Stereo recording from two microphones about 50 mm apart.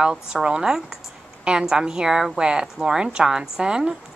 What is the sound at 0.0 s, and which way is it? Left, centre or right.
A woman's voice, centre.